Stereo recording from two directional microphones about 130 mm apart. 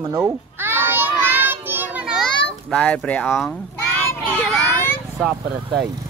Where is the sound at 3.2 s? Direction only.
Centre (ahead or behind).